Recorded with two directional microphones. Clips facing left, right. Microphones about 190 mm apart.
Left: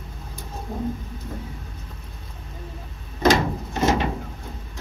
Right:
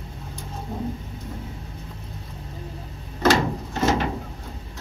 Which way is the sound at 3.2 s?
15° left (ahead or behind).